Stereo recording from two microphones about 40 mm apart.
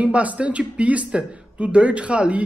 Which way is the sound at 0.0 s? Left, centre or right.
Right.